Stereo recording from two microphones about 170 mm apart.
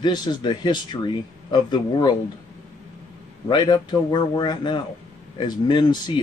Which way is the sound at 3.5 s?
25° left (ahead or behind).